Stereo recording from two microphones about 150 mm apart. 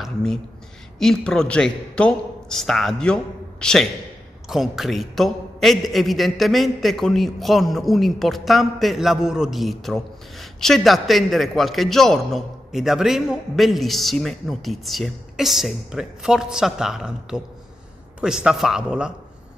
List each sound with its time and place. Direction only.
0.0 s a man's voice: 5° left (ahead or behind)